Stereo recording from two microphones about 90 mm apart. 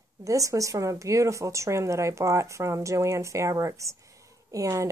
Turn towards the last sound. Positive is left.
turn(degrees=-40)  # may be behind; listen again after turning